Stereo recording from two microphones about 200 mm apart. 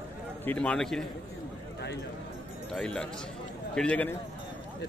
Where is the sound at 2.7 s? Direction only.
5° left (ahead or behind).